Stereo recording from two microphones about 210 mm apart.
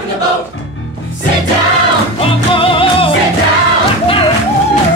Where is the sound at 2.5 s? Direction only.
25° left (ahead or behind).